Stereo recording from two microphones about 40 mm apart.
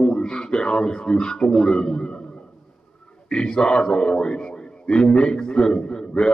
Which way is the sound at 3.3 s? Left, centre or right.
Left.